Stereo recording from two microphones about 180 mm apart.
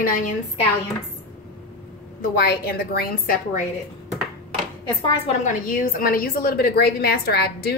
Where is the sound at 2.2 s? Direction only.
60° left (ahead or behind).